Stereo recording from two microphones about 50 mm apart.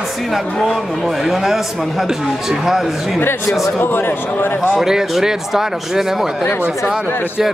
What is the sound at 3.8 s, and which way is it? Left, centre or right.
Speech, left.